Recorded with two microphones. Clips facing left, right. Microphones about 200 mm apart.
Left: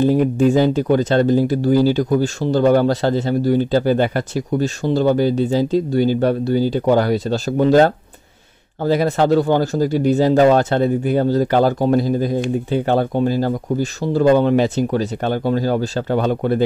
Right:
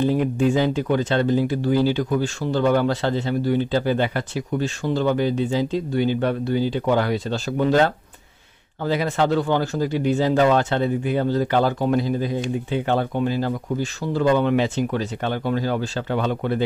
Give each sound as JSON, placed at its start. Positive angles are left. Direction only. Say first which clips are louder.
{"t": 0.0, "sound": "speech", "louder": "left 5 dB", "side_deg": 40}